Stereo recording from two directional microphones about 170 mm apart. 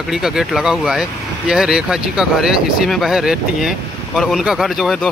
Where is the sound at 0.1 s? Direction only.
5° right (ahead or behind).